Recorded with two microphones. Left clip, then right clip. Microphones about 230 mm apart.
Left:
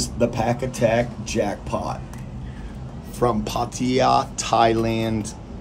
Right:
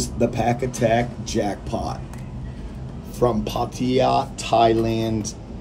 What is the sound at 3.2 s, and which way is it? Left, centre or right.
Speech, centre.